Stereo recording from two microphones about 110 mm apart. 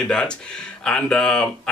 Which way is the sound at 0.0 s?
5° left (ahead or behind).